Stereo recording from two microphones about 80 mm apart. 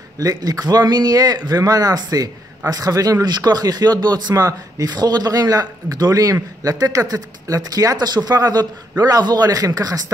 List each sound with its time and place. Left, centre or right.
0.2 s speech: right
4.4 s speech: right
4.8 s speech: right